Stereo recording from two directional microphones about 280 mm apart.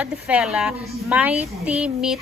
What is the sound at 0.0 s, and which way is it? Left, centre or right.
A woman's voice, centre.